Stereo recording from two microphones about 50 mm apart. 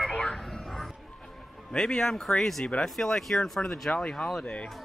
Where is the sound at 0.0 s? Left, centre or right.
Centre.